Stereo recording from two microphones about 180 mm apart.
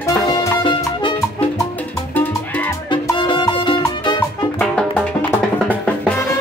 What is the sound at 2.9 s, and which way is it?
Salsa music, 25° left (ahead or behind).